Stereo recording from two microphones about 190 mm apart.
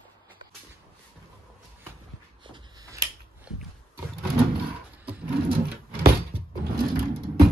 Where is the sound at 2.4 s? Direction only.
20° right (ahead or behind).